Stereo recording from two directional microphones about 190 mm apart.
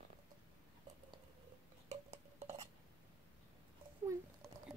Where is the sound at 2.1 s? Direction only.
35° right (ahead or behind).